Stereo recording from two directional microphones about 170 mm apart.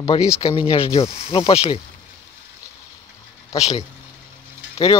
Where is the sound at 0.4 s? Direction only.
30° left (ahead or behind).